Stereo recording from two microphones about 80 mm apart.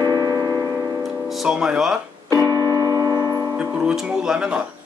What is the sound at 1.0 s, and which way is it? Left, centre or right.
Speech, centre.